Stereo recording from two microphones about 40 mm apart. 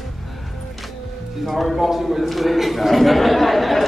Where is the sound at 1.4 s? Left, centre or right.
Centre.